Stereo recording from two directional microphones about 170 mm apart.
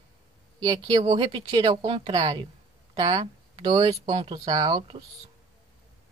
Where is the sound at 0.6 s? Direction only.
25° right (ahead or behind).